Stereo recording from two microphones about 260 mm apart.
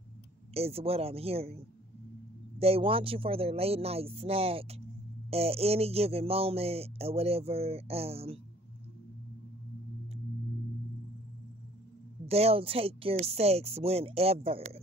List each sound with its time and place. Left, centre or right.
0.6 s speech: right
2.6 s speech: right
12.3 s speech: right